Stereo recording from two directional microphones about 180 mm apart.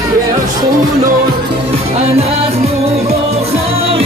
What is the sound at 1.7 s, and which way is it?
Music, 35° right (ahead or behind).